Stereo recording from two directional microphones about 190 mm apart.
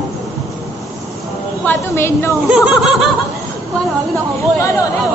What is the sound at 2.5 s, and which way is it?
Speech, 5° right (ahead or behind).